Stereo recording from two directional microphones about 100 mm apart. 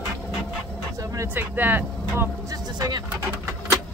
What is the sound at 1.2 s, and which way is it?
Speech, 20° right (ahead or behind).